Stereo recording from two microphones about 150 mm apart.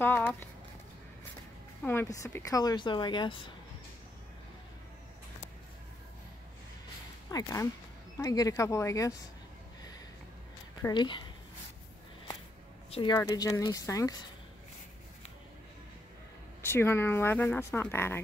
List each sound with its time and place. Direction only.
0.0 s speech: 15° left (ahead or behind)
1.8 s speech: 15° left (ahead or behind); by 3.5 s 30° left (ahead or behind)
7.2 s speech: 20° left (ahead or behind)
10.8 s speech: 30° left (ahead or behind)
12.9 s speech: 30° left (ahead or behind)
16.6 s speech: 15° left (ahead or behind)